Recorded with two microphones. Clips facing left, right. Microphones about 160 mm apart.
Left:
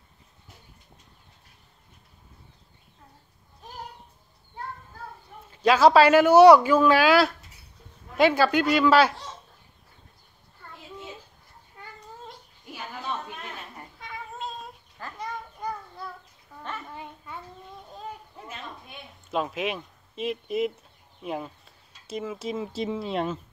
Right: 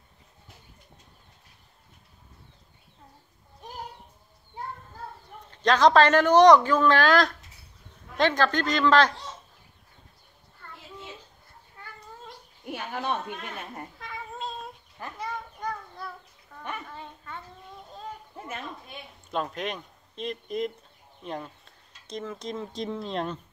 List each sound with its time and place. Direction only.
5.5 s speech: 5° left (ahead or behind)
12.6 s a sound: 65° right (ahead or behind)
13.9 s cat: centre (ahead or behind)
15.1 s a sound: centre (ahead or behind)
16.5 s bathtub: 5° left (ahead or behind)
16.9 s dog: 10° left (ahead or behind)
18.9 s speech: 5° left (ahead or behind)